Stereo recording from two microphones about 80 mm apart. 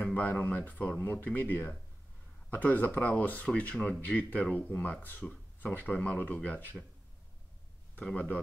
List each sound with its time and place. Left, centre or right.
0.0 s speech: left
7.9 s speech: centre